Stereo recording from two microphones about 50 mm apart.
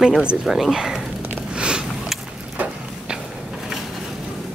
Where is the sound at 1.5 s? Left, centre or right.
Centre.